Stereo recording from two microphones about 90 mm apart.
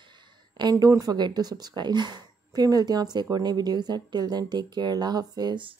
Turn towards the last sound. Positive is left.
turn(degrees=-50)  # may be behind; listen again after turning